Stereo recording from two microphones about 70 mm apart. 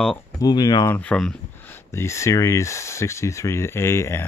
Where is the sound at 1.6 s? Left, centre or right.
Left.